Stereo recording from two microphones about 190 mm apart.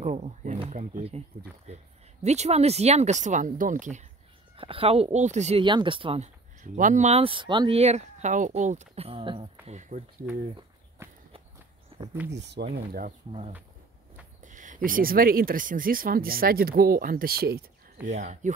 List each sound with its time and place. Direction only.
0.0 s a sound: 35° right (ahead or behind)
0.6 s speech: 40° right (ahead or behind)
2.2 s speech: 35° right (ahead or behind)
4.6 s speech: 30° right (ahead or behind)
11.0 s walk: 15° right (ahead or behind)
11.9 s a sound: 30° right (ahead or behind)
12.3 s speech: 65° right (ahead or behind)
12.7 s speech: 50° right (ahead or behind)
14.4 s speech: 40° right (ahead or behind)
18.0 s speech: 40° right (ahead or behind)